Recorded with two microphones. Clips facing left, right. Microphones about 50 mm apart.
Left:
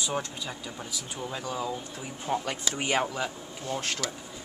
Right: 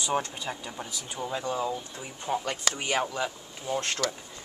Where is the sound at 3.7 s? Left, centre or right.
Centre.